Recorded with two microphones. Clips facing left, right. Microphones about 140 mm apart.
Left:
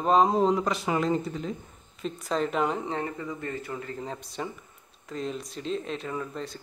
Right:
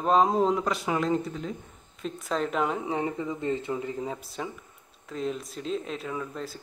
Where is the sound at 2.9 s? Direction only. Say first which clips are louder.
Right 3 dB; 15° right (ahead or behind).